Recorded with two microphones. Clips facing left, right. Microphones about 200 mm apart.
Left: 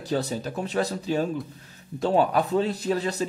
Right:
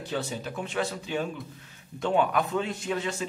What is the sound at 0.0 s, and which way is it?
A man's voice, 40° left (ahead or behind).